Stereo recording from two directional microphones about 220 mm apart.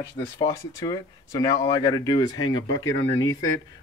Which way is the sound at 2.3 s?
70° left (ahead or behind).